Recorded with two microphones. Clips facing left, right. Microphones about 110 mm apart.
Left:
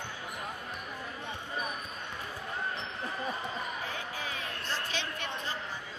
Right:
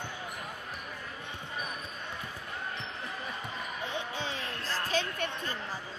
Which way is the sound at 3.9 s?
30° right (ahead or behind).